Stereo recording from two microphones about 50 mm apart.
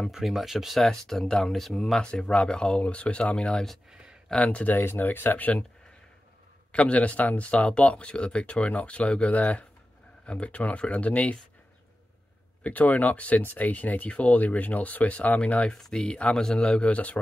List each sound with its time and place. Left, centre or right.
0.1 s speech: centre
0.7 s speech: centre
2.0 s speech: centre
3.9 s a sound: centre
4.4 s speech: left
4.6 s speech: left
6.7 s speech: left
12.6 s speech: left
15.8 s speech: centre